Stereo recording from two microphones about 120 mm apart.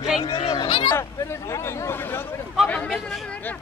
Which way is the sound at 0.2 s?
50° left (ahead or behind).